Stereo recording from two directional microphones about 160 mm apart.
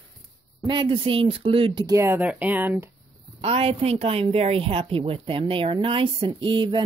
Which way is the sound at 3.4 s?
40° right (ahead or behind).